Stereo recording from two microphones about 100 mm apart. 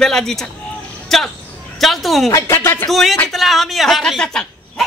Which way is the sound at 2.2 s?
30° left (ahead or behind).